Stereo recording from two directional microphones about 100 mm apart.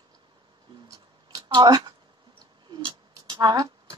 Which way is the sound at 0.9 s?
40° right (ahead or behind).